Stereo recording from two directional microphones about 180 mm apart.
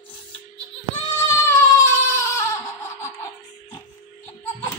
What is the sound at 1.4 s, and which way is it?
Crying, 15° left (ahead or behind).